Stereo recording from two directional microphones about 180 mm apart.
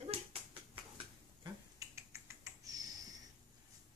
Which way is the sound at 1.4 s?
15° right (ahead or behind).